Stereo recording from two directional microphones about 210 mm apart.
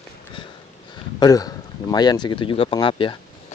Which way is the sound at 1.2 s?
20° left (ahead or behind).